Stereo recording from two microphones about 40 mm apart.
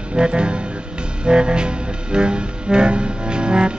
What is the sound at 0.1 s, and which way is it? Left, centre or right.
Music, right.